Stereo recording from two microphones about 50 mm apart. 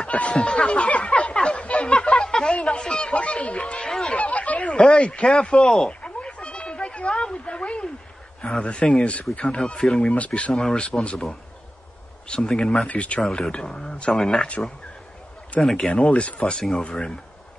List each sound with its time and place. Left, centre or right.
0.0 s a sound: left
2.5 s speech: left
4.2 s speech: left
4.7 s a man's voice: centre
5.9 s a sound: left
8.5 s speech: left
10.0 s speech: left
10.5 s a man's voice: centre
12.3 s a man's voice: centre
12.8 s a man's voice: left; by 15.9 s centre
15.9 s speech: left